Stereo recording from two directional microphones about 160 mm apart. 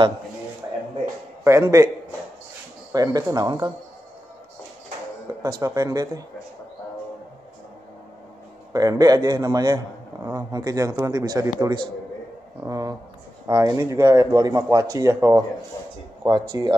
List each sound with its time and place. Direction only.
1.4 s a man's voice: 15° right (ahead or behind)
2.9 s speech: 25° right (ahead or behind)
5.4 s speech: 20° right (ahead or behind)
8.7 s speech: 25° right (ahead or behind)